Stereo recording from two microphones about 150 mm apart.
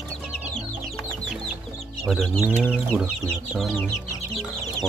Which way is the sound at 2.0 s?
Centre (ahead or behind).